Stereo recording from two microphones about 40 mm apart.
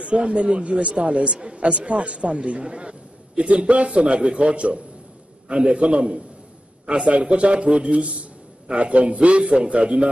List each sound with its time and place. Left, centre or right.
0.0 s a man's voice: right